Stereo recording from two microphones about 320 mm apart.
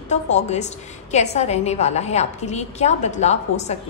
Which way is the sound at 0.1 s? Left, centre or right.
Left.